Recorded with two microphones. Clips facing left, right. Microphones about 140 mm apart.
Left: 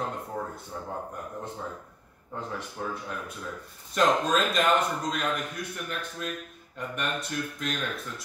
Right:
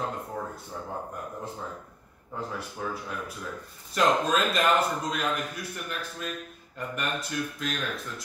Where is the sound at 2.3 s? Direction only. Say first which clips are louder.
Even; centre (ahead or behind).